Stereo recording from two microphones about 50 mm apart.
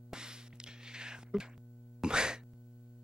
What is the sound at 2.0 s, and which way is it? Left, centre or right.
Throat clearing, centre.